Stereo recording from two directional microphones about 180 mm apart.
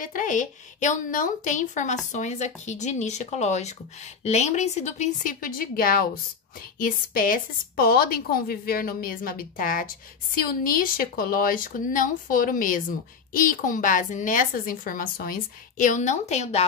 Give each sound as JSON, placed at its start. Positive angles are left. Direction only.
{"t": 0.0, "sound": "a woman's voice", "side_deg": 50}